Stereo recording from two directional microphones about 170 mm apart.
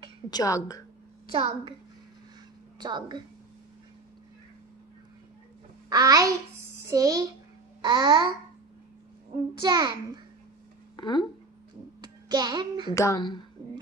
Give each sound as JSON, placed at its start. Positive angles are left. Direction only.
{"t": 0.3, "sound": "a woman's voice", "side_deg": 20}
{"t": 1.3, "sound": "a child's voice", "side_deg": -30}
{"t": 2.8, "sound": "a child's voice", "side_deg": -25}
{"t": 5.9, "sound": "a child's voice", "side_deg": -20}
{"t": 9.6, "sound": "a child's voice", "side_deg": -25}
{"t": 11.0, "sound": "speech", "side_deg": 25}
{"t": 12.0, "sound": "a child's voice", "side_deg": -25}
{"t": 12.9, "sound": "a woman's voice", "side_deg": 20}